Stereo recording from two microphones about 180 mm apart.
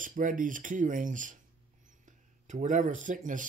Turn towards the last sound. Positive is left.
turn(degrees=-45)  # may be behind; listen again after turning